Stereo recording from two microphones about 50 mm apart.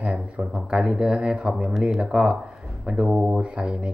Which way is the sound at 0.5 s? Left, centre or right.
Centre.